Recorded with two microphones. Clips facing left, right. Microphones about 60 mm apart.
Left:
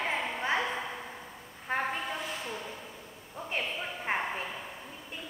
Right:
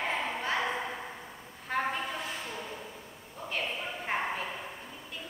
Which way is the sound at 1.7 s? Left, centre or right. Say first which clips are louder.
Even; left.